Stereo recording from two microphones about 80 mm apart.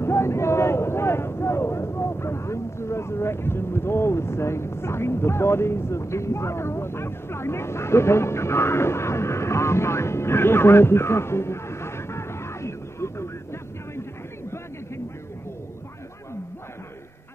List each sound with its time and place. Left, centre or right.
0.0 s speech: left